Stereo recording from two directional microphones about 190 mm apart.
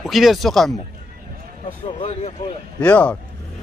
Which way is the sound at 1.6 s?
40° left (ahead or behind).